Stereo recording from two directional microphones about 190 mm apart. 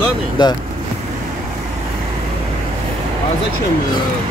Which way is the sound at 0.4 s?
25° left (ahead or behind).